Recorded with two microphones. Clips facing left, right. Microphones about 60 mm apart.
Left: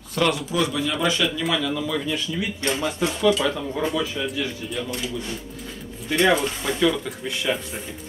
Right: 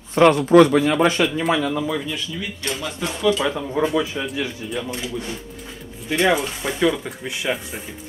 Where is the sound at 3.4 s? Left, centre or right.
Centre; by 5.3 s right.